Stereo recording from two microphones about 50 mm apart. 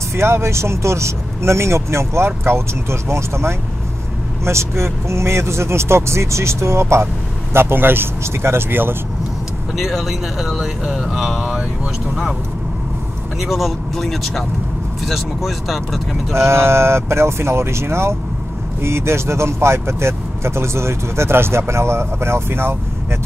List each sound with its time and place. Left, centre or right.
0.1 s speech: right
7.5 s speech: right
9.8 s speech: centre
13.4 s speech: centre
16.3 s speech: right